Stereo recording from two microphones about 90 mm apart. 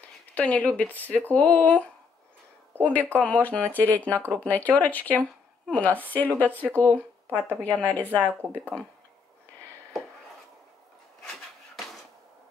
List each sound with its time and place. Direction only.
0.0 s speech: 15° left (ahead or behind)